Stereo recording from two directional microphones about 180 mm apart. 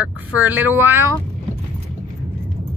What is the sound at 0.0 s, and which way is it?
Speech, 10° right (ahead or behind).